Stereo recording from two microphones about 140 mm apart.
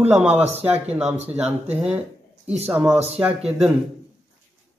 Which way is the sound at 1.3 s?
50° right (ahead or behind).